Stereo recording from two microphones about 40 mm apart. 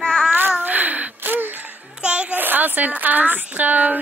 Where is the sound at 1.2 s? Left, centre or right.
Right.